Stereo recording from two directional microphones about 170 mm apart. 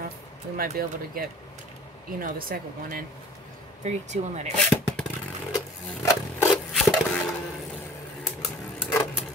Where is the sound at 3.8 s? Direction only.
40° right (ahead or behind).